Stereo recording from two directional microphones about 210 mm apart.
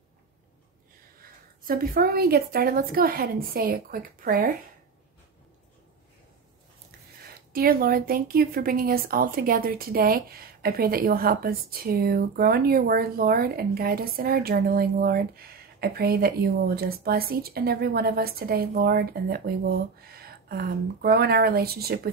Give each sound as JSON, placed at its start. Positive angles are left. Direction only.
{"t": 1.6, "sound": "a woman's voice", "side_deg": -45}
{"t": 7.2, "sound": "a woman's voice", "side_deg": -45}